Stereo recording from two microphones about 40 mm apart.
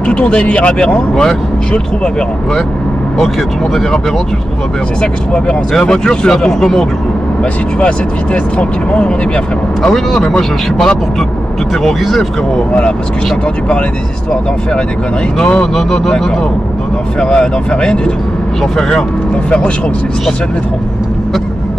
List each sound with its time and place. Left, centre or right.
0.0 s speech: left
5.0 s speech: left
7.8 s speech: left
9.8 s speech: centre
11.8 s speech: centre
15.5 s speech: centre
17.2 s speech: left
18.6 s speech: centre